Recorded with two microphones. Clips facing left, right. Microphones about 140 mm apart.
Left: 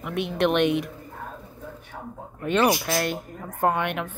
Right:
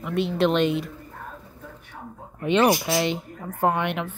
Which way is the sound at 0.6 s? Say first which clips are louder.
Left 1 dB; 60° left (ahead or behind).